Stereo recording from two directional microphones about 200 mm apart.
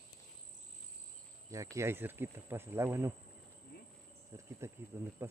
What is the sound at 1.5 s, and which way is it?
Speech, 15° right (ahead or behind).